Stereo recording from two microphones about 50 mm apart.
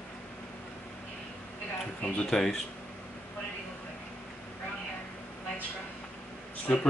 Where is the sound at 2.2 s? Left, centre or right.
Centre.